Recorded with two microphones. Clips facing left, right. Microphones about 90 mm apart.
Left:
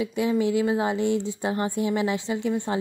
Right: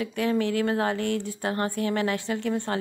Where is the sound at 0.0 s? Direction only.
15° left (ahead or behind).